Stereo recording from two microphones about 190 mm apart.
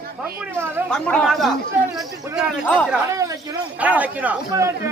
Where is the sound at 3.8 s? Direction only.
10° right (ahead or behind).